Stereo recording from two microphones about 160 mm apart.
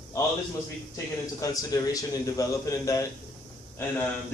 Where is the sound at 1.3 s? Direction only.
20° left (ahead or behind).